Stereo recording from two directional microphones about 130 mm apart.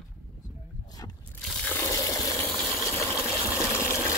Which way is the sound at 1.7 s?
20° left (ahead or behind).